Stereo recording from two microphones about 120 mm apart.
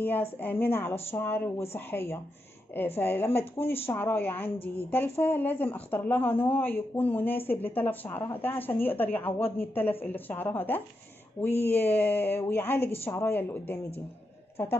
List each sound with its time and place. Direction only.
0.0 s speech: 15° left (ahead or behind)